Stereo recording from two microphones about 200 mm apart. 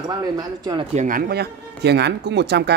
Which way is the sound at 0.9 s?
40° right (ahead or behind).